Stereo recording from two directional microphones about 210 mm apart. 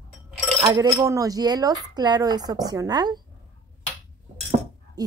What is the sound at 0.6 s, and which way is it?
Speech, 20° right (ahead or behind).